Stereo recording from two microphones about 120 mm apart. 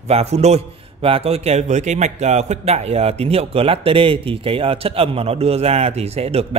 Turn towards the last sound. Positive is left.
turn(degrees=-55)  # may be behind; listen again after turning